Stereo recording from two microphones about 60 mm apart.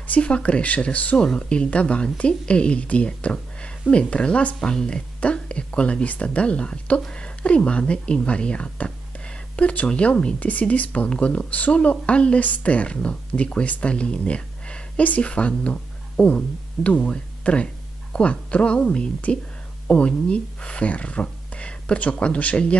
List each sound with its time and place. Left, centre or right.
0.0 s speech: left